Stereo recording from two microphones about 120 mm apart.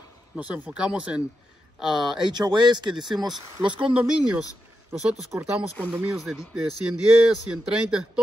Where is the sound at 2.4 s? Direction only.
40° right (ahead or behind).